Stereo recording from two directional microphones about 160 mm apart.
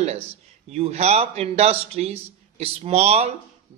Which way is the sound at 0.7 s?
40° right (ahead or behind).